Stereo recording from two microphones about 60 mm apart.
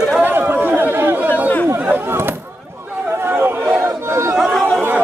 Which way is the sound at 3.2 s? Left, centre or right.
Right.